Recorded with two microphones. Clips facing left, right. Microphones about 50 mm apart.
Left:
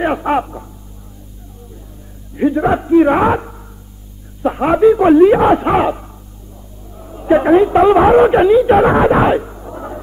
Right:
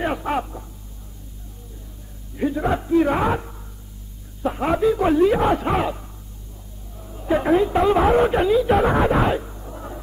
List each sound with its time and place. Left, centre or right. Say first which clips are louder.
0.0 s speech: left 8 dB; left
2.3 s a woman's voice: left 8 dB; left
8.9 s a sound: left 7 dB; left